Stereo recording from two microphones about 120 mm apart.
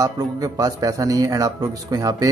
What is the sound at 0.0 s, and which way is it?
Speech, 30° right (ahead or behind).